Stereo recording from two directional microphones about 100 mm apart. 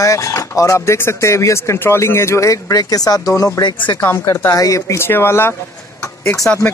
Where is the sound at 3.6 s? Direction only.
50° left (ahead or behind).